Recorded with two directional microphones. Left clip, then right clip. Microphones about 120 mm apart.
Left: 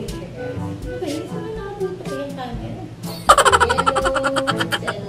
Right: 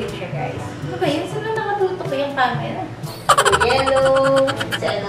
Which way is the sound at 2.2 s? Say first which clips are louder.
Right 11 dB; 20° right (ahead or behind).